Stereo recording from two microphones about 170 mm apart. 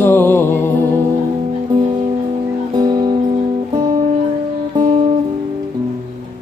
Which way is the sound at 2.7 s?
20° right (ahead or behind).